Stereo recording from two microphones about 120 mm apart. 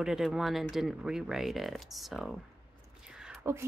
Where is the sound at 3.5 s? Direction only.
20° right (ahead or behind).